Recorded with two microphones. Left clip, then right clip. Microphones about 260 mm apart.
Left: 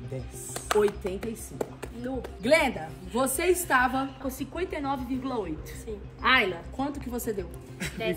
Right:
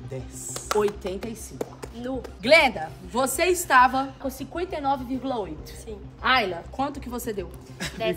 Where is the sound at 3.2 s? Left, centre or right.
Centre.